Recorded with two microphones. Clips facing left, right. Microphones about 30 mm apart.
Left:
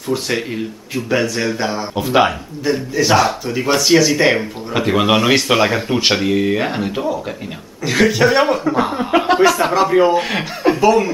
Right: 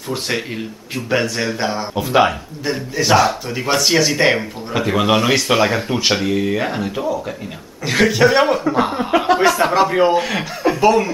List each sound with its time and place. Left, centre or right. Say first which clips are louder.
0.1 s speech: left 3 dB; centre
2.6 s speech: left 3 dB; centre
4.7 s speech: left 1 dB; centre
7.8 s speech: even; centre
10.1 s speech: even; centre
10.8 s speech: even; centre